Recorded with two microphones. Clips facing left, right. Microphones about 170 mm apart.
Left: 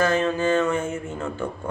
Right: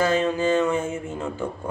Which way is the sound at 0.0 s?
15° right (ahead or behind).